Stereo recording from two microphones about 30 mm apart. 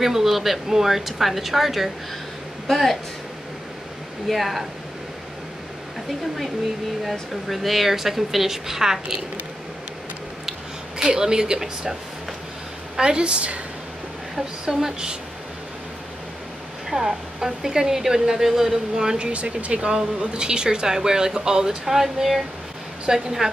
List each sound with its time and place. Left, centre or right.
0.0 s a woman's voice: centre
2.7 s speech: centre
4.3 s speech: centre
7.1 s a woman's voice: centre
11.0 s speech: right
13.0 s speech: right
14.8 s speech: right
16.9 s a woman's voice: centre
19.3 s a woman's voice: right; by 23.5 s centre